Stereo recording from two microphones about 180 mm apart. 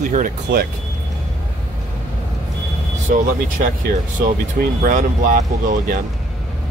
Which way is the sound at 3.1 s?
45° right (ahead or behind).